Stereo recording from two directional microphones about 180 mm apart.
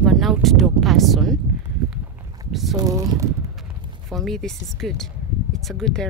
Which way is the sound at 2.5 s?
Centre (ahead or behind).